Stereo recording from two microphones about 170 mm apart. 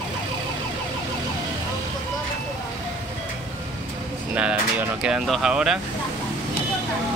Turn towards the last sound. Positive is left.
turn(degrees=-5)  # may be behind; listen again after turning